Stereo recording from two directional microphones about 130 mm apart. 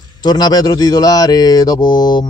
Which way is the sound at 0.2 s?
30° left (ahead or behind).